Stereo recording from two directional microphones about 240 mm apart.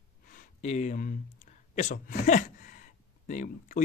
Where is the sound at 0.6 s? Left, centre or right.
Left.